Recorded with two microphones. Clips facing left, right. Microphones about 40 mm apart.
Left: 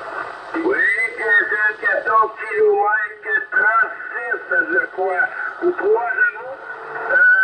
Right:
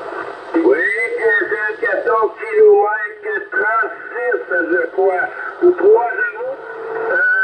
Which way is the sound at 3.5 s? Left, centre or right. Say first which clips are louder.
Even; centre.